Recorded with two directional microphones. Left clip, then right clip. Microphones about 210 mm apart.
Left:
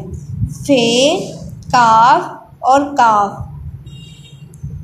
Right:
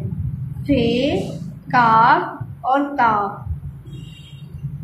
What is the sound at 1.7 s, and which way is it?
Speech, 25° left (ahead or behind).